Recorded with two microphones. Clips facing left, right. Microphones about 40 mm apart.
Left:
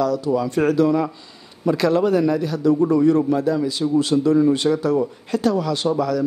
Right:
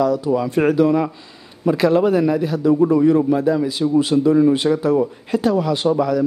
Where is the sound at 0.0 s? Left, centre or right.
Centre.